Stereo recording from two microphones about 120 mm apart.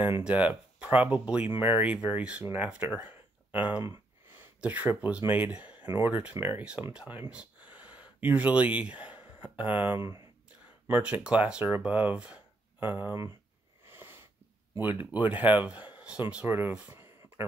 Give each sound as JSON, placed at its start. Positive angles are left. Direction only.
{"t": 0.2, "sound": "speech", "side_deg": -10}
{"t": 7.7, "sound": "gasp", "side_deg": -15}
{"t": 10.9, "sound": "speech", "side_deg": -10}
{"t": 13.8, "sound": "sniff", "side_deg": -20}
{"t": 14.8, "sound": "speech", "side_deg": -15}